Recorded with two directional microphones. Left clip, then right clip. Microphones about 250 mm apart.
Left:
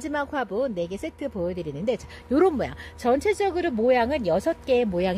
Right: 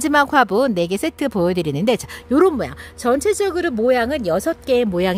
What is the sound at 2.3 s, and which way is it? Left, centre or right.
Speech, centre.